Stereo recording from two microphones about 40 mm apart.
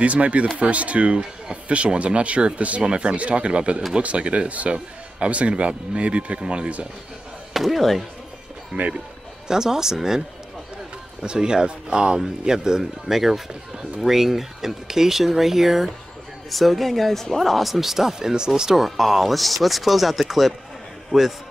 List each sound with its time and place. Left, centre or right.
0.0 s speech: right
7.5 s speech: centre
8.7 s speech: right
9.5 s speech: centre
11.2 s speech: centre
18.9 s speech: centre
21.1 s speech: right